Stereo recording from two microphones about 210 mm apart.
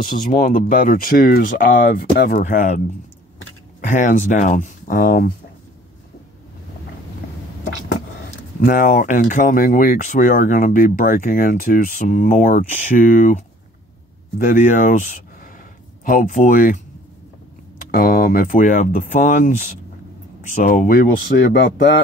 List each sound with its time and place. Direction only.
0.0 s speech: 40° left (ahead or behind)
3.8 s speech: 35° left (ahead or behind)
8.5 s speech: 40° left (ahead or behind)
14.4 s speech: 40° left (ahead or behind)
17.9 s speech: 40° left (ahead or behind)